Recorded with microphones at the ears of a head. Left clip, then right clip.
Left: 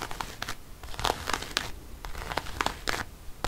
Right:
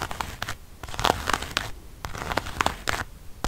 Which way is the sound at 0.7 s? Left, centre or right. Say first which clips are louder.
Right 6 dB; right.